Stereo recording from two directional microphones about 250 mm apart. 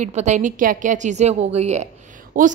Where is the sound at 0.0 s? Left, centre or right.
Right.